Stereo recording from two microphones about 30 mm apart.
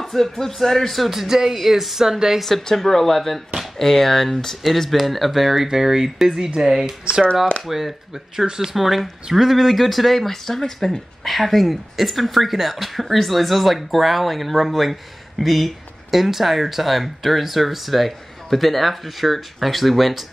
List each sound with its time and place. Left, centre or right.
0.0 s speech: centre
1.1 s speech: centre
2.0 s speech: centre
2.7 s speech: centre